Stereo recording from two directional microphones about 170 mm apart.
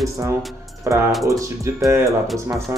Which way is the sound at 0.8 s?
15° right (ahead or behind).